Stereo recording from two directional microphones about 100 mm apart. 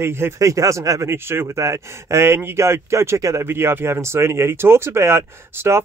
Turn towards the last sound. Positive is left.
turn(degrees=-25)  # may be behind; listen again after turning